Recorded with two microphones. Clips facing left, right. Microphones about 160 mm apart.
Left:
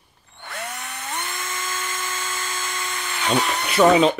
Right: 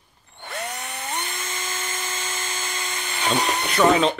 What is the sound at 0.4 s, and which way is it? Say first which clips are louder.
Drill: right 1 dB; 20° right (ahead or behind).